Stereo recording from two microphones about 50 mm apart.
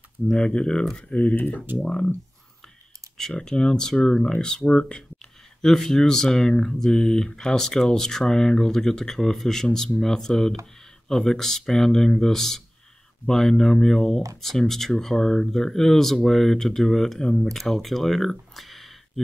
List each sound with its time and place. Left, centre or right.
0.3 s speech: centre
1.8 s speech: centre
3.3 s speech: centre
18.5 s a sound: centre